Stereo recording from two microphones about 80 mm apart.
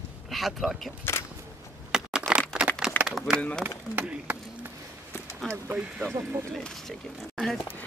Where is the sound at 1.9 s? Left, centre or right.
Centre.